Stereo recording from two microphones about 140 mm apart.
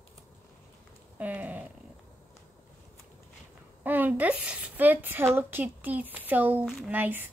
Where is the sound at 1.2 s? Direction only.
10° right (ahead or behind).